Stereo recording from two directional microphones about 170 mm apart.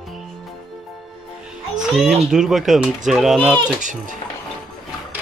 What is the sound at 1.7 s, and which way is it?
A child's voice, 5° right (ahead or behind).